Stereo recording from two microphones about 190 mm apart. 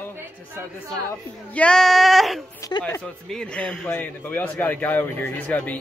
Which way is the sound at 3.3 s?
5° left (ahead or behind).